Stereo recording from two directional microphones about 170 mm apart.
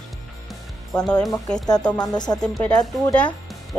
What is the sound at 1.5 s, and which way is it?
Speech, 20° left (ahead or behind).